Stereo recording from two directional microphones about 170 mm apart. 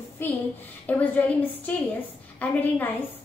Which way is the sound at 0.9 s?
10° left (ahead or behind).